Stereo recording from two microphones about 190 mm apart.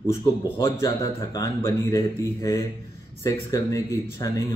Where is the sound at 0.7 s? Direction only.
20° left (ahead or behind).